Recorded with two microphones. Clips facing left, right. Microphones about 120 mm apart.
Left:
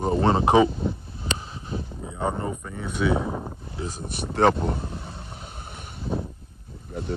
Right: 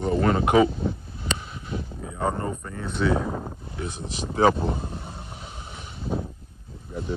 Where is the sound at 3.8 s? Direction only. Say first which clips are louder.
Even; 40° left (ahead or behind).